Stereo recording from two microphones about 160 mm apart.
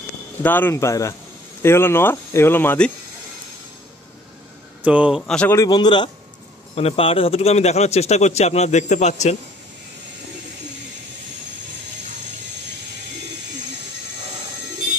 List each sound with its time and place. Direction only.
0.4 s speech: 10° left (ahead or behind)
4.8 s speech: 5° right (ahead or behind)
5.2 s speech: 5° left (ahead or behind)
5.6 s a man's voice: 25° left (ahead or behind)
6.7 s speech: 40° left (ahead or behind)